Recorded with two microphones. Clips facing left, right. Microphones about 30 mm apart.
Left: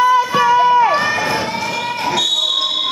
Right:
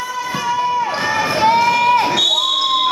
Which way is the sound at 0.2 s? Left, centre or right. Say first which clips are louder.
Left 7 dB; centre.